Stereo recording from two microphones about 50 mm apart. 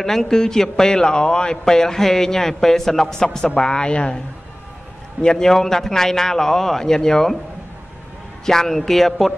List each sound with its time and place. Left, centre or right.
0.0 s a man's voice: centre
5.2 s a man's voice: centre
8.5 s a man's voice: centre